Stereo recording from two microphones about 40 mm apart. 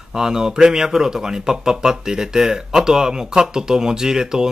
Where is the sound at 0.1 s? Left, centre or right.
Centre.